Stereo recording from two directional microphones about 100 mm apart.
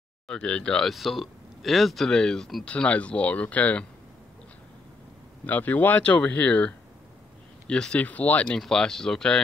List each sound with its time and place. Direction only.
0.3 s speech: 10° left (ahead or behind)
5.4 s speech: 15° left (ahead or behind)